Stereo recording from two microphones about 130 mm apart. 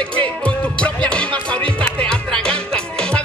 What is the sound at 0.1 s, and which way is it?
Music, 10° left (ahead or behind).